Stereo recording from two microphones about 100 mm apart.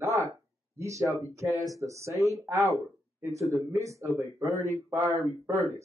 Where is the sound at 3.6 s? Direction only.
30° right (ahead or behind).